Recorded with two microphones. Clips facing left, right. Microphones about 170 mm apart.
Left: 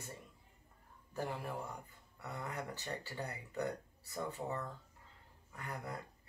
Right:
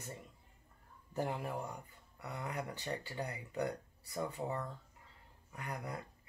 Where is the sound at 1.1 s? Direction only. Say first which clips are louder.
Right 3 dB; 20° right (ahead or behind).